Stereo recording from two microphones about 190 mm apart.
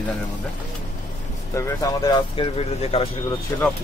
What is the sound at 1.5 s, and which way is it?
Speech, 15° left (ahead or behind).